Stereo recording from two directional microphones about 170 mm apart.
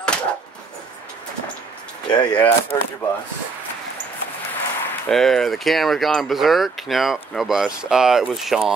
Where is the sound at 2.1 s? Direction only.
25° left (ahead or behind).